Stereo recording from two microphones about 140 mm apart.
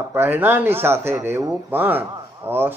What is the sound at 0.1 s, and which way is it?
Speech, 15° right (ahead or behind).